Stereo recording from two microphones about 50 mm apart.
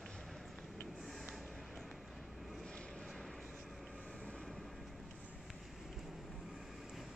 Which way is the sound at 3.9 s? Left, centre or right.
Centre.